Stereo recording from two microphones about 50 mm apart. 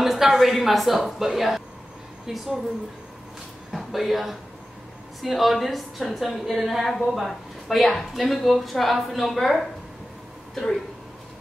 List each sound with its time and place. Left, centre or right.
0.0 s a woman's voice: centre
3.7 s speech: centre